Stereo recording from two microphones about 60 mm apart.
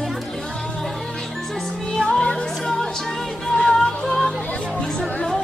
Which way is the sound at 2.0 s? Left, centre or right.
Centre.